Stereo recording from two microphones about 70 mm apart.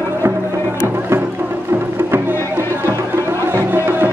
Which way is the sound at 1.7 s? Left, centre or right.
Right.